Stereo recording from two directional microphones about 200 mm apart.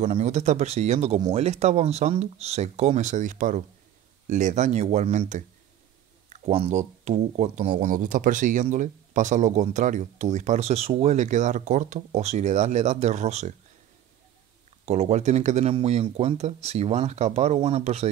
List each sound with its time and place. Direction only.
0.0 s speech: 35° right (ahead or behind)
14.9 s speech: 35° right (ahead or behind)